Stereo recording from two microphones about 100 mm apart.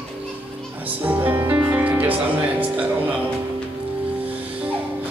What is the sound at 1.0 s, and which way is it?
Speech, 20° right (ahead or behind).